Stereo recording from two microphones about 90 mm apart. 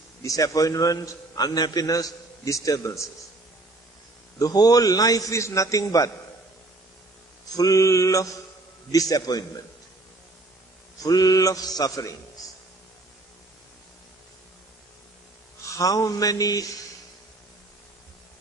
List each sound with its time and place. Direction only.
0.2 s a man's voice: 35° left (ahead or behind)
4.4 s a man's voice: 45° left (ahead or behind)
7.5 s a man's voice: 40° left (ahead or behind)
11.0 s a man's voice: 45° left (ahead or behind)
15.7 s a man's voice: 40° left (ahead or behind)